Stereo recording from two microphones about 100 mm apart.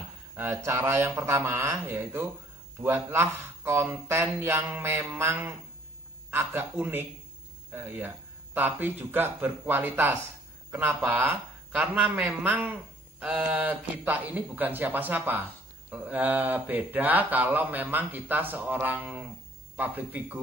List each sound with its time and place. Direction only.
0.4 s speech: 30° right (ahead or behind)